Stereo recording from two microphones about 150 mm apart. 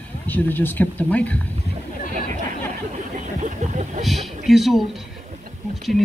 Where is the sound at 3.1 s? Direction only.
55° right (ahead or behind).